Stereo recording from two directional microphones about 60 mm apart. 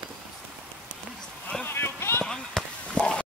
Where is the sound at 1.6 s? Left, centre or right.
Left.